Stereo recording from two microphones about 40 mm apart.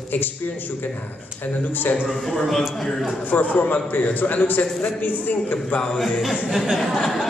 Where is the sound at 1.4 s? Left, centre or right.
Left.